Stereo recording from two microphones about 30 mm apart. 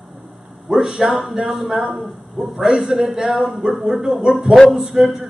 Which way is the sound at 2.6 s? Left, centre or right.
Centre.